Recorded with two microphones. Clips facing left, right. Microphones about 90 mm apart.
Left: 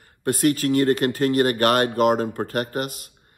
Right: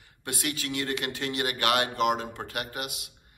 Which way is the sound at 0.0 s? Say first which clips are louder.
Left 13 dB; 45° left (ahead or behind).